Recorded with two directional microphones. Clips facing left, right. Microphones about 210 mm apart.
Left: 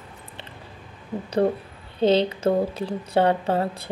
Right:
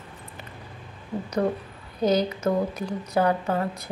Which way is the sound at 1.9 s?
30° left (ahead or behind).